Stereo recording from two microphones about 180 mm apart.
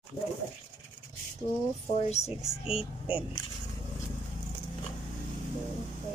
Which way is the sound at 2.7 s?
30° left (ahead or behind).